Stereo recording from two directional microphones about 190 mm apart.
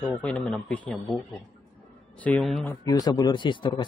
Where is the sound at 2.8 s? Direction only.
20° left (ahead or behind).